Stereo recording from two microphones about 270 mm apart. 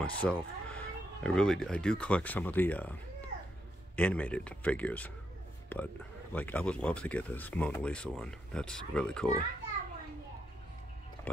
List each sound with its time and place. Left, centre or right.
0.0 s speech: centre